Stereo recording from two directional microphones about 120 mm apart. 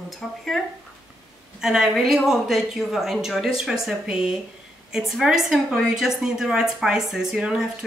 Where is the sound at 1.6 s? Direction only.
5° right (ahead or behind).